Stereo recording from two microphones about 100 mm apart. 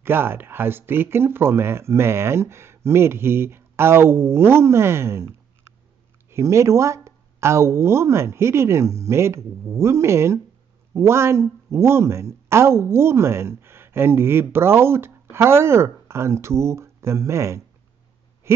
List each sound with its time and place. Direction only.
0.0 s speech: 25° right (ahead or behind)
6.3 s speech: 30° right (ahead or behind)